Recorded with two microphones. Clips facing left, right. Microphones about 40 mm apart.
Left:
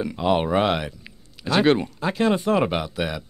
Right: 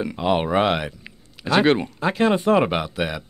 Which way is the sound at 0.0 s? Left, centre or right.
Right.